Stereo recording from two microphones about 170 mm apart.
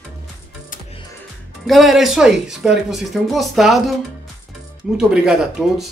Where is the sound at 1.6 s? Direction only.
Centre (ahead or behind).